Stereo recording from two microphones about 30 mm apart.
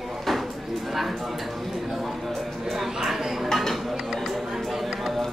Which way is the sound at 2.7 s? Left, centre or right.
Centre.